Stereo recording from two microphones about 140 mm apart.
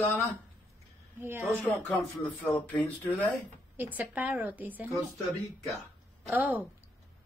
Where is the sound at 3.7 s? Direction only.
15° right (ahead or behind).